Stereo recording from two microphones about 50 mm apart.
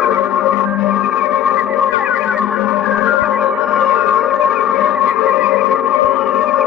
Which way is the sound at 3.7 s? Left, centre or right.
Centre.